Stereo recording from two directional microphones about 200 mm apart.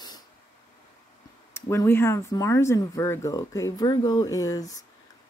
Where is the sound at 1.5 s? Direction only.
10° left (ahead or behind).